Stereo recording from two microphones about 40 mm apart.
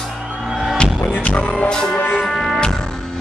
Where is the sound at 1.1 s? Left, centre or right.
Left.